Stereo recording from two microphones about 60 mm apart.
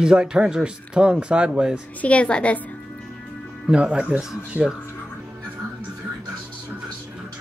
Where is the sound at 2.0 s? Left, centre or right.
Left.